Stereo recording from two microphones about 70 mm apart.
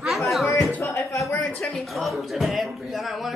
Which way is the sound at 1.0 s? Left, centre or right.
Left.